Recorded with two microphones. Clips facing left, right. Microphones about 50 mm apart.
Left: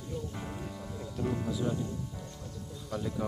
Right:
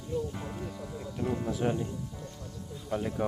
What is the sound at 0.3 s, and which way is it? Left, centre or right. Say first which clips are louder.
Music: right 2 dB; centre.